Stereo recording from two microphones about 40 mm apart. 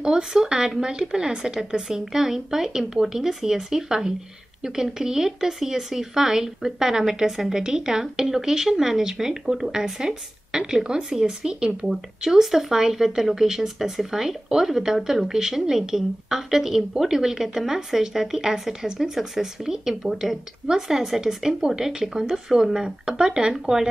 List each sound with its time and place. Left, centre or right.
0.0 s speech: centre
11.9 s speech: centre